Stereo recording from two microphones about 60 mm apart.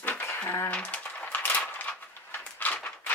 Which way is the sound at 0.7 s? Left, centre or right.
Centre.